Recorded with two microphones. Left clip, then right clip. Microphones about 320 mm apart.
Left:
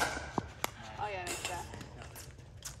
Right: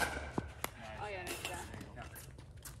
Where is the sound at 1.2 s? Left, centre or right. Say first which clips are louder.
Left 3 dB; left.